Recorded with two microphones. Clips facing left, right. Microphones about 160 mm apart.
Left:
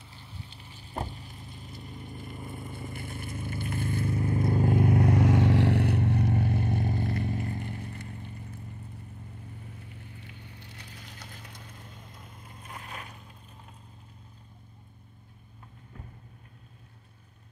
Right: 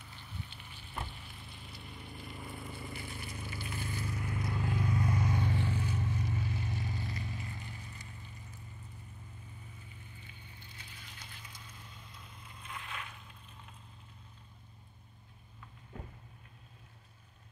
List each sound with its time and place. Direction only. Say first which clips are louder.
0.0 s sizzle: left 1 dB; 30° left (ahead or behind); by 4.1 s 55° left (ahead or behind)
4.1 s vehicle: left 10 dB; 30° left (ahead or behind)
4.4 s vehicle: left 11 dB; 50° left (ahead or behind)
9.6 s wood: left 7 dB; 70° left (ahead or behind)
10.9 s a sound: left 6 dB; 40° left (ahead or behind)
11.4 s vehicle: left 5 dB; 60° left (ahead or behind); by 13.4 s 40° left (ahead or behind)